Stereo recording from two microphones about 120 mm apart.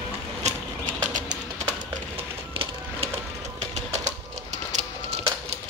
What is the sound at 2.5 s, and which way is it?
Music, 50° right (ahead or behind).